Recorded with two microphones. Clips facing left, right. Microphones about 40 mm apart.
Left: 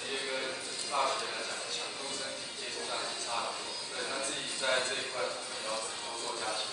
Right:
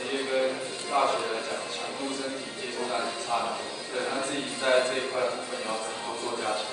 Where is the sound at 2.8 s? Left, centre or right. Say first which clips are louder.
Right 8 dB; right.